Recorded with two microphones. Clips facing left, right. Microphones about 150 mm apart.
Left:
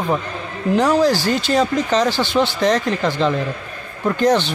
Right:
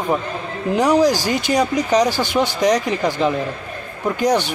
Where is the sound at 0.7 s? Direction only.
15° right (ahead or behind).